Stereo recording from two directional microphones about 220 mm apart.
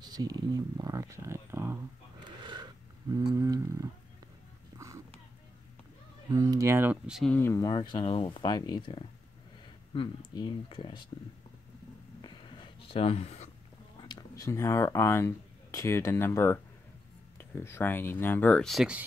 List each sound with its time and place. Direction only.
0.0 s speech: 20° right (ahead or behind)
2.1 s a sound: 20° right (ahead or behind)
6.3 s speech: 15° right (ahead or behind)
7.3 s speech: 10° left (ahead or behind)
12.2 s a sound: 20° left (ahead or behind)
14.0 s speech: 15° left (ahead or behind); by 19.0 s 5° right (ahead or behind)